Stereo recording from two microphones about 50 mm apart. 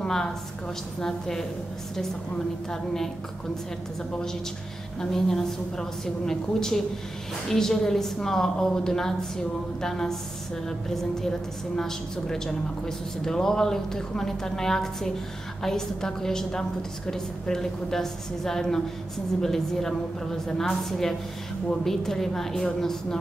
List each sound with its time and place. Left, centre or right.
0.0 s a woman's voice: centre
2.7 s a woman's voice: centre
5.1 s a woman's voice: centre